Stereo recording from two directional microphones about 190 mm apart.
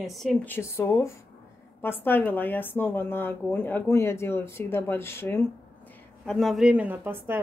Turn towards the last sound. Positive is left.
turn(degrees=-10)  # may be behind; listen again after turning